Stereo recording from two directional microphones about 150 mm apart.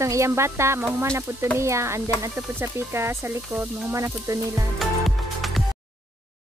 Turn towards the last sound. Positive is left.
turn(degrees=0)  # may be behind; listen again after turning